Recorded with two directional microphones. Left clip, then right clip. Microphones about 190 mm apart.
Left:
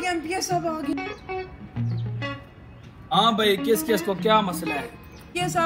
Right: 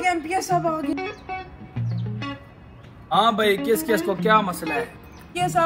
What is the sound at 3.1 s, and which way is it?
Speech, centre (ahead or behind).